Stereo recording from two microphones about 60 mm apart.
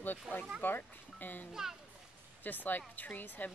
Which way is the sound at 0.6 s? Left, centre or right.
Left.